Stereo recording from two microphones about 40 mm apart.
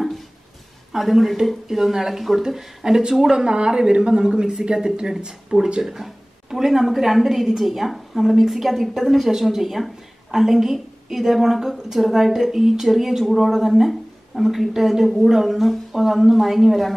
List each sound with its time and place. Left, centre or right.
0.9 s a woman's voice: centre